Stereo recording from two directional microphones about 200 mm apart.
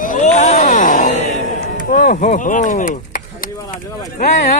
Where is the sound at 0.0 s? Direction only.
40° left (ahead or behind).